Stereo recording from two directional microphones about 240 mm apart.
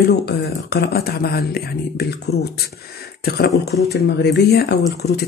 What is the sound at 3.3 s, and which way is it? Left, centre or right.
Speech, left.